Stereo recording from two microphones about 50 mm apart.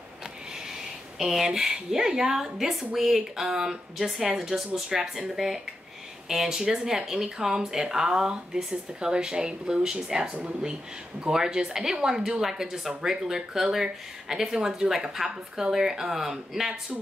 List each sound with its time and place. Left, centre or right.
1.1 s a woman's voice: centre